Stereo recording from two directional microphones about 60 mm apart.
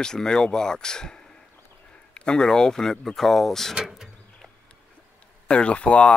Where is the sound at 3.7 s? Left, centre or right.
Centre.